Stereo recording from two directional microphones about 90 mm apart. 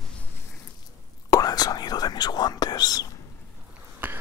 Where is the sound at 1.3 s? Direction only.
45° left (ahead or behind).